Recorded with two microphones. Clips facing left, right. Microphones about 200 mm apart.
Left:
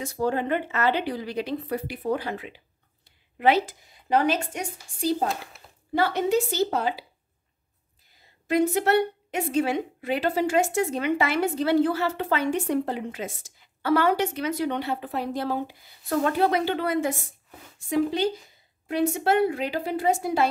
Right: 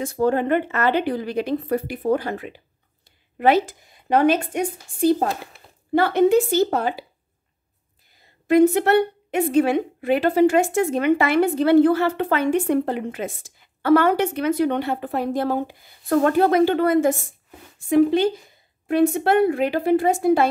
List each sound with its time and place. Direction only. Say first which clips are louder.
0.0 s a woman's voice: right 6 dB; 55° right (ahead or behind)
8.5 s a woman's voice: right 6 dB; 55° right (ahead or behind)